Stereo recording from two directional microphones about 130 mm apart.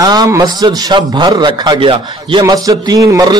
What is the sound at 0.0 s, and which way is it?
A man's voice, 30° right (ahead or behind).